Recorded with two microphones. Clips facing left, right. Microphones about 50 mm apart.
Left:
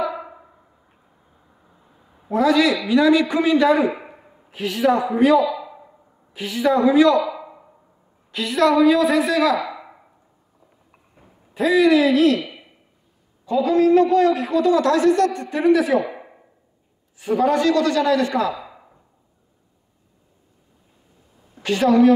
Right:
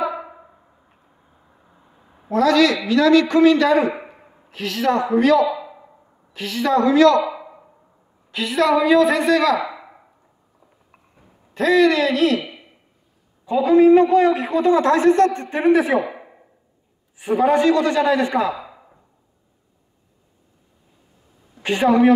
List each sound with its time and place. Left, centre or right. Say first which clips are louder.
0.0 s a sound: right 1 dB; centre
2.3 s a man's voice: right 1 dB; centre
8.3 s a woman's voice: even; centre
9.6 s a sound: right 1 dB; centre
11.5 s a woman's voice: even; centre
13.5 s a man's voice: right 4 dB; centre
16.1 s a sound: even; centre
17.2 s a man's voice: right 2 dB; right
21.6 s a man's voice: even; right